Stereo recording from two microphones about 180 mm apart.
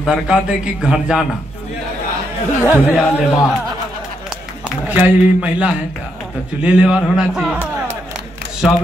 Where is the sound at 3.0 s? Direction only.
15° left (ahead or behind).